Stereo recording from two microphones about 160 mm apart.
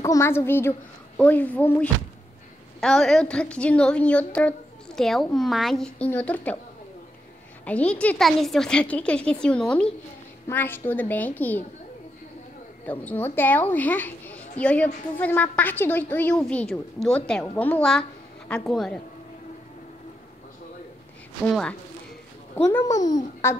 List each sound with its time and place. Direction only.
0.0 s a woman's voice: 15° left (ahead or behind)
7.6 s a woman's voice: 10° left (ahead or behind)
12.8 s a woman's voice: 10° left (ahead or behind)
21.5 s a woman's voice: 5° left (ahead or behind); by 23.5 s 20° left (ahead or behind)